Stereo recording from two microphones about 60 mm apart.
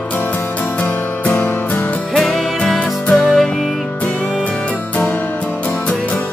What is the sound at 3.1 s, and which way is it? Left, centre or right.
Music, centre.